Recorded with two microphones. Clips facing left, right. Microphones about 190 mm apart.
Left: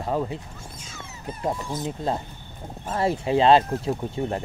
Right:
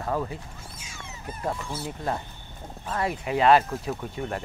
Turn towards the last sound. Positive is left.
turn(degrees=25)  # may be behind; listen again after turning